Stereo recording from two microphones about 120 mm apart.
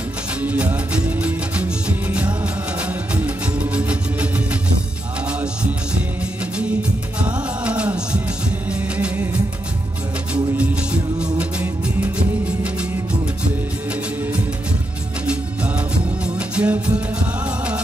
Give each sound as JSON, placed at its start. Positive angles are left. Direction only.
{"t": 0.4, "sound": "music", "side_deg": -10}
{"t": 3.5, "sound": "music", "side_deg": -10}
{"t": 7.2, "sound": "music of bollywood", "side_deg": -10}
{"t": 10.3, "sound": "music", "side_deg": -10}
{"t": 16.3, "sound": "music", "side_deg": -10}